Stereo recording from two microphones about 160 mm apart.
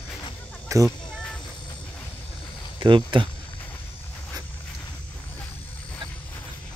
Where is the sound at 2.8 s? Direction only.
30° right (ahead or behind).